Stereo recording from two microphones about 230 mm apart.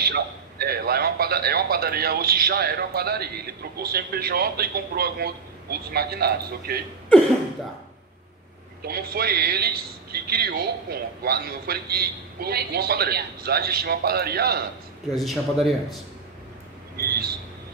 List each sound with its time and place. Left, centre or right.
0.0 s a man's voice: right
8.8 s a man's voice: right
15.1 s speech: centre
16.9 s a man's voice: right